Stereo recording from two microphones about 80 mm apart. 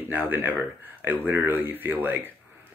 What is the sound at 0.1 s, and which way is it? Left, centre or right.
Speech, right.